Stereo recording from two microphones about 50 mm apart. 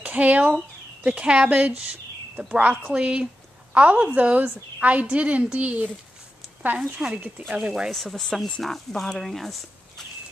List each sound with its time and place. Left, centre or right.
0.0 s a woman's voice: right
7.0 s a woman's voice: centre
7.9 s speech: centre